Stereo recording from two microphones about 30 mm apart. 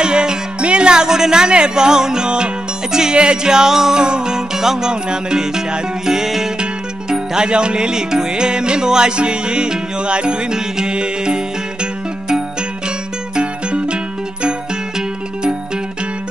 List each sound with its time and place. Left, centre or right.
0.0 s speech: right
2.9 s music: right
6.6 s music: right
13.4 s music: right